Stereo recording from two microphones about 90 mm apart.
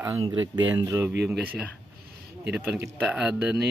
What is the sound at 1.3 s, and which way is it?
Speech, 10° right (ahead or behind).